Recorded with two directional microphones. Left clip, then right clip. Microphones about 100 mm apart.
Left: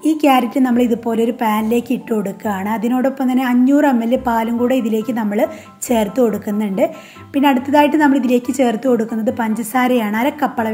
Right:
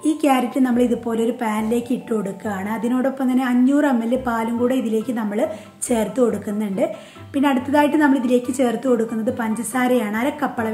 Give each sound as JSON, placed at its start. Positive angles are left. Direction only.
{"t": 0.0, "sound": "a woman's voice", "side_deg": 30}